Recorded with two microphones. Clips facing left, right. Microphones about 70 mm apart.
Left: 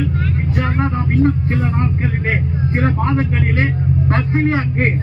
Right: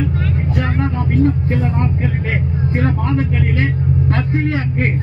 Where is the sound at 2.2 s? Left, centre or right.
Left.